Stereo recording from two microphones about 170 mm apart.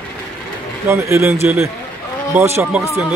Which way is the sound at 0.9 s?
15° right (ahead or behind).